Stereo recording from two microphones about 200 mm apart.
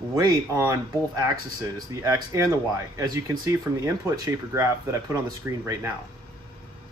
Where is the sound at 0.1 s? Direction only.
20° right (ahead or behind).